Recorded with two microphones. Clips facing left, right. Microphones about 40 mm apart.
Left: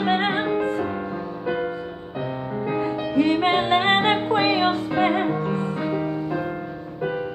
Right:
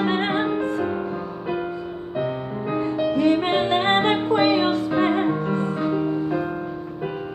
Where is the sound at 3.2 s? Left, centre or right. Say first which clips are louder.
Left 2 dB; left; by 6.4 s centre.